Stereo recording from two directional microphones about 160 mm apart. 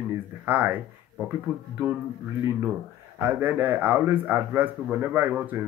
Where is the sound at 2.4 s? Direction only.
15° right (ahead or behind).